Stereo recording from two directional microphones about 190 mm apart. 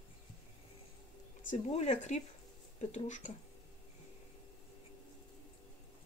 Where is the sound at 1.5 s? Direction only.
35° left (ahead or behind).